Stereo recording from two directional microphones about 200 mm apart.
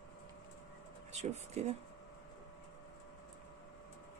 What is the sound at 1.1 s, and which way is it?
Speech, 35° right (ahead or behind).